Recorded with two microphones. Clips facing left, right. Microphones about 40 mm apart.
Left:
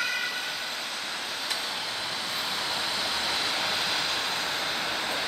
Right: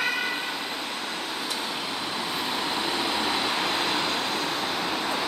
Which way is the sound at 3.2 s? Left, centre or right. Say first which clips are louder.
Right 3 dB; right.